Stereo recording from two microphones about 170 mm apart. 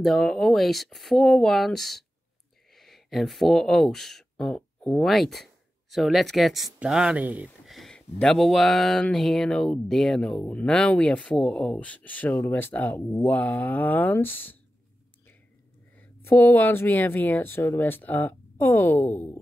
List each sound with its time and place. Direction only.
0.0 s speech: centre (ahead or behind)
16.3 s speech: 10° left (ahead or behind)